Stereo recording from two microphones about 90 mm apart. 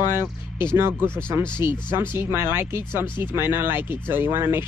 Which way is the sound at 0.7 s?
25° right (ahead or behind).